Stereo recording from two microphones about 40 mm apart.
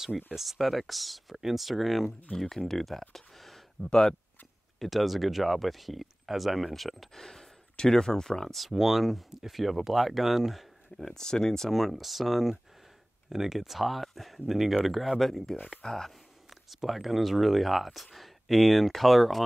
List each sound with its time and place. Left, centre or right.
0.3 s speech: centre
7.2 s speech: centre
8.5 s speech: centre
11.1 s speech: centre
11.7 s speech: centre
15.5 s speech: left
15.8 s speech: centre
16.4 s speech: centre